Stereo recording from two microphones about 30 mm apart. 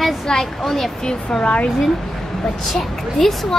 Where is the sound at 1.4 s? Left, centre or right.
Left.